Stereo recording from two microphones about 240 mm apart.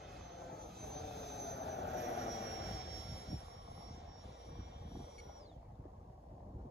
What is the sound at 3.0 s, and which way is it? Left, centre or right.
Vehicle, right.